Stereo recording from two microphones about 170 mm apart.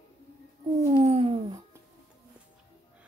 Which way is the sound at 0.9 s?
40° right (ahead or behind).